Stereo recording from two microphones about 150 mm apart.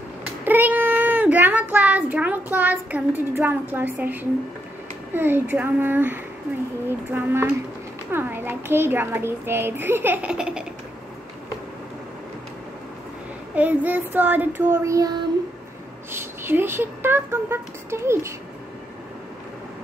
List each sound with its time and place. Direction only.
0.5 s a child's voice: 10° right (ahead or behind)
13.6 s a child's voice: 10° right (ahead or behind)